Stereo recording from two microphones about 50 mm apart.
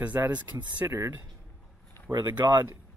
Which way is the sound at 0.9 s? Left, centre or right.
Right.